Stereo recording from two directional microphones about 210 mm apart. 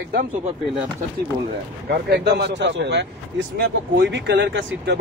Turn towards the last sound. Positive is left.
turn(degrees=-55)  # may be behind; listen again after turning